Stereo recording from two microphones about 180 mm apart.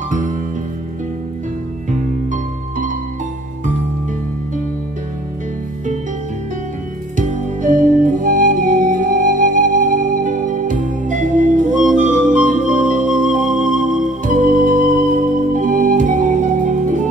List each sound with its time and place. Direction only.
1.9 s music: 45° right (ahead or behind)
7.2 s music: 45° right (ahead or behind)